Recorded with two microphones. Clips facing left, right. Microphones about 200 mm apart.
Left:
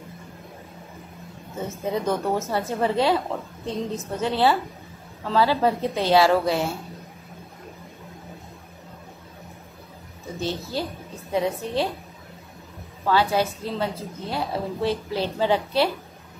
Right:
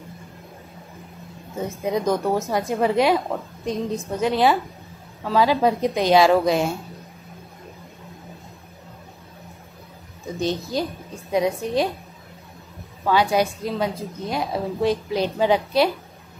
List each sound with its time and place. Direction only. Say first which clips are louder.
1.9 s a woman's voice: right 3 dB; 15° right (ahead or behind)
10.4 s a woman's voice: right 4 dB; 15° right (ahead or behind)
13.0 s a woman's voice: right 2 dB; 15° right (ahead or behind)